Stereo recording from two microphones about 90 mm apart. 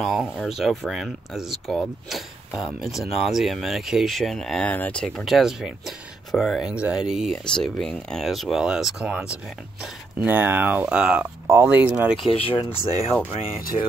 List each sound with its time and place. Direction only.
0.0 s speech: 5° right (ahead or behind)
6.7 s speech: 10° right (ahead or behind)
7.5 s speech: 5° left (ahead or behind); by 9.3 s 10° right (ahead or behind)
10.2 s speech: 20° right (ahead or behind)
11.4 s speech: 25° right (ahead or behind)
12.3 s speech: 90° left